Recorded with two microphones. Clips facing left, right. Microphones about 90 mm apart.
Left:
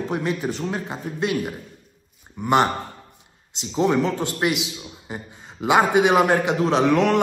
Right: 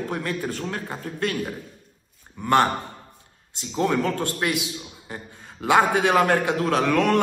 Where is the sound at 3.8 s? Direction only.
20° left (ahead or behind).